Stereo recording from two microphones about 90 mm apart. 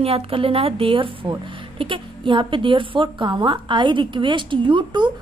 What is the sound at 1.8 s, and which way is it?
A woman's voice, 70° right (ahead or behind).